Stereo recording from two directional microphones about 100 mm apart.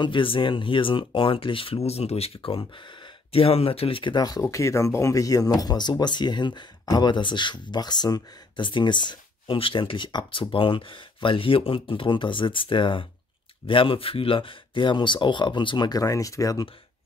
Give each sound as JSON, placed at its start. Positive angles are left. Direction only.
{"t": 0.0, "sound": "speech", "side_deg": 55}